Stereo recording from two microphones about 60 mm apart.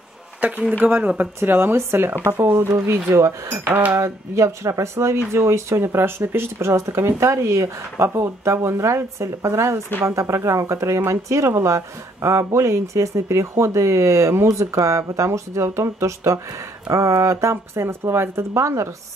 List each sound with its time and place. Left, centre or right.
0.4 s speech: right
1.4 s speech: right
3.5 s speech: right
4.0 s speech: right